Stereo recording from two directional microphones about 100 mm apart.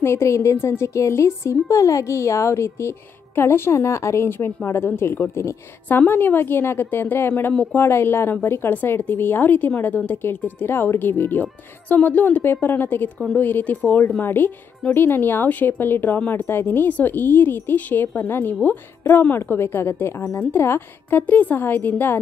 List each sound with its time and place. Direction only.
0.0 s speech: 30° left (ahead or behind)
5.9 s speech: 20° left (ahead or behind)